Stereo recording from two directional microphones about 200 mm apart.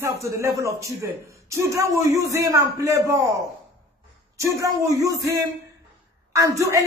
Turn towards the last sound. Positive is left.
turn(degrees=-15)  # may be behind; listen again after turning